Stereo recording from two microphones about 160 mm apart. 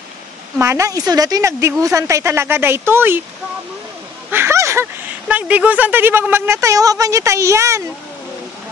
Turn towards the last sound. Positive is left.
turn(degrees=-20)  # may be behind; listen again after turning